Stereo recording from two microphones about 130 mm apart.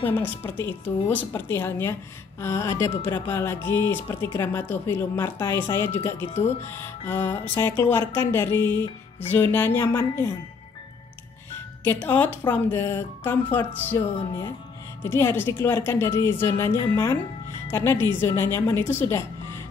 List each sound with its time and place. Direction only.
0.0 s speech: 15° left (ahead or behind)
11.8 s speech: 15° left (ahead or behind)
15.0 s speech: 20° left (ahead or behind)